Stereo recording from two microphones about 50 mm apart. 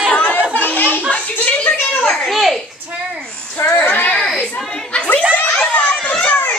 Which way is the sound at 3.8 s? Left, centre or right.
Left.